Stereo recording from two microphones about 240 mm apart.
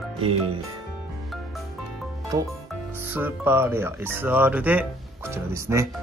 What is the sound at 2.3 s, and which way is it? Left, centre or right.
Speech, centre.